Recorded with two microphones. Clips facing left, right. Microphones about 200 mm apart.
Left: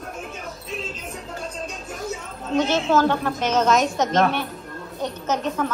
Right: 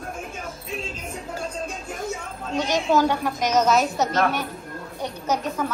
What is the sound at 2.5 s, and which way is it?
A woman's voice, 15° right (ahead or behind).